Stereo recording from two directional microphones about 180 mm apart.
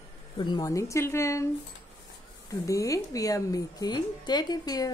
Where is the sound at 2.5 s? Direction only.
15° left (ahead or behind).